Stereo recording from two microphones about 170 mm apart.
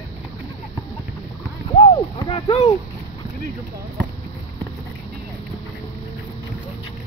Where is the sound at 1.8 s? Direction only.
30° left (ahead or behind).